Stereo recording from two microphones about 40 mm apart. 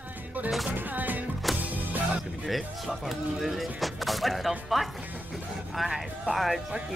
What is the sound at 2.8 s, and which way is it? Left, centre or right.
Music, centre.